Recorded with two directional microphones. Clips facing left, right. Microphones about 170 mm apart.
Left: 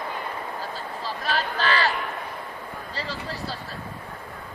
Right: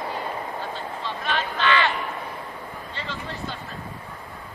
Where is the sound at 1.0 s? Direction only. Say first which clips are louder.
Left 1 dB; 35° left (ahead or behind).